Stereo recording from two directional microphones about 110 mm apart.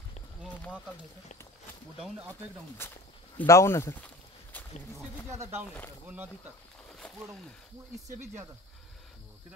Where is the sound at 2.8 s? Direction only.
20° left (ahead or behind).